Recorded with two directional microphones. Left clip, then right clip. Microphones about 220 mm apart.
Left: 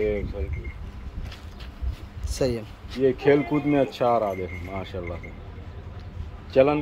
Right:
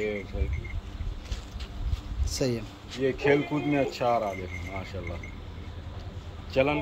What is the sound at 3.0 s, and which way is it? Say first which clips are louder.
Speech: left 4 dB; 35° left (ahead or behind).